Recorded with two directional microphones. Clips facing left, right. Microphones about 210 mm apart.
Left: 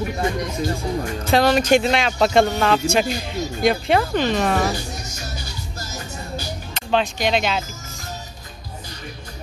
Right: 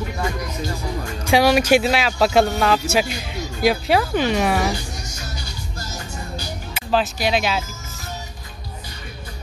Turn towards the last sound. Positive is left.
turn(degrees=-5)  # may be behind; listen again after turning